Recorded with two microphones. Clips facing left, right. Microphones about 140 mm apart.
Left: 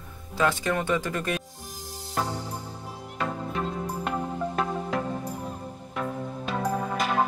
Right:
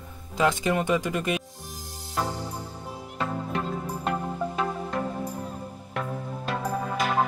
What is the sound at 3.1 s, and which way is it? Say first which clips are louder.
Music: even; centre (ahead or behind).